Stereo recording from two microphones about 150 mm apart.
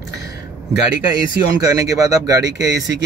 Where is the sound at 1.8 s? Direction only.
25° right (ahead or behind).